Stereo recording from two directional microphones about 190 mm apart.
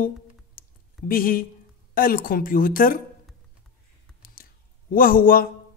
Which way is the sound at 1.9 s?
50° left (ahead or behind).